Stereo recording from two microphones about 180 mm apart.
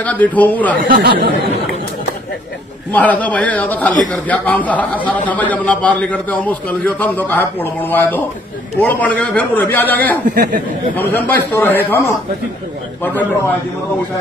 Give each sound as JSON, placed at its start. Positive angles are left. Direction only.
{"t": 0.0, "sound": "a man's voice", "side_deg": 10}
{"t": 0.8, "sound": "speech", "side_deg": -60}
{"t": 2.9, "sound": "a man's voice", "side_deg": 10}
{"t": 10.3, "sound": "speech", "side_deg": -45}
{"t": 11.0, "sound": "a man's voice", "side_deg": 10}
{"t": 13.0, "sound": "a man's voice", "side_deg": 10}